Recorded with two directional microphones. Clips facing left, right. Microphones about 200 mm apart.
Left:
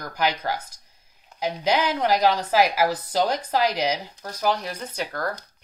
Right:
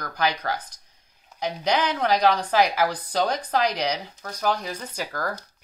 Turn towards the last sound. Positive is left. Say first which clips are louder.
# left 1 dB
turn(degrees=0)  # may be behind; listen again after turning